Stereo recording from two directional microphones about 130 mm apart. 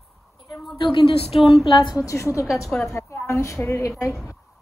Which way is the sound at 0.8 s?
40° left (ahead or behind).